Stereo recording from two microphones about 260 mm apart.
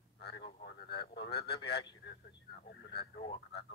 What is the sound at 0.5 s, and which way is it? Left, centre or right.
Speech, left.